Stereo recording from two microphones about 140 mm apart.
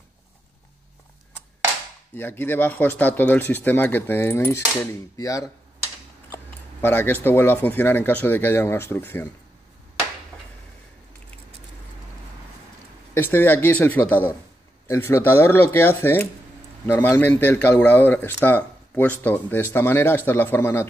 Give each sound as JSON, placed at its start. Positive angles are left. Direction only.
{"t": 2.1, "sound": "speech", "side_deg": 15}
{"t": 6.3, "sound": "a sound", "side_deg": 15}
{"t": 7.2, "sound": "speech", "side_deg": 15}
{"t": 13.1, "sound": "speech", "side_deg": 15}